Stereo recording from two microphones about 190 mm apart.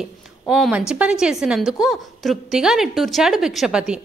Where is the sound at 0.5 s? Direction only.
5° right (ahead or behind).